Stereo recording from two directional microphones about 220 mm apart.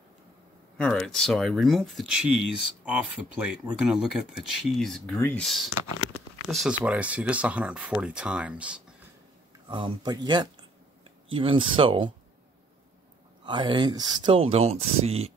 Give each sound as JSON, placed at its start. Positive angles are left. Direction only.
{"t": 0.7, "sound": "speech", "side_deg": 5}
{"t": 9.7, "sound": "speech", "side_deg": -20}
{"t": 13.5, "sound": "speech", "side_deg": -20}